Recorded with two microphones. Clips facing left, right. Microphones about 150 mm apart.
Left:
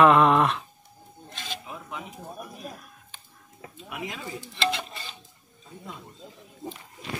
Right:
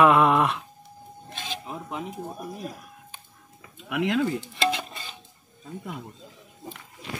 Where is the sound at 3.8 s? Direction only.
75° right (ahead or behind).